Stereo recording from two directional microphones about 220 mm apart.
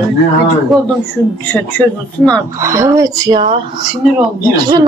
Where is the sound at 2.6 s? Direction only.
15° right (ahead or behind).